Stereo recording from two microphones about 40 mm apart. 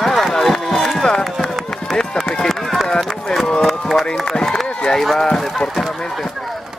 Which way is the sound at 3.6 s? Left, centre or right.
Centre.